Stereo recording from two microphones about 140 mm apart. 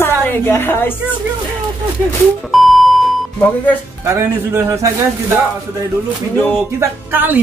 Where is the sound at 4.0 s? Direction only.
20° right (ahead or behind).